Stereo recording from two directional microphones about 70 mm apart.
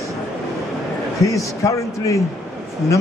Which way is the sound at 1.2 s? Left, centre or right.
Left.